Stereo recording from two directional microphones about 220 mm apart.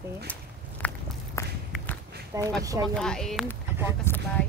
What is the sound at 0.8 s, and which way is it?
Walk, 5° left (ahead or behind).